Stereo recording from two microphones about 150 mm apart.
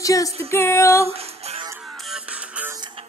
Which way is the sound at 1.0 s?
45° right (ahead or behind).